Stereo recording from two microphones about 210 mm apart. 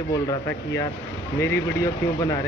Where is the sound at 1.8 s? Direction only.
15° left (ahead or behind).